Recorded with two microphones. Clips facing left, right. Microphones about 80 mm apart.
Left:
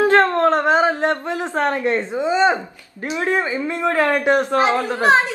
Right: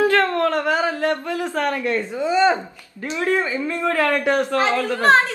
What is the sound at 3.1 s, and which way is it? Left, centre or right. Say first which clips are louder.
A man's voice: left 1 dB; left.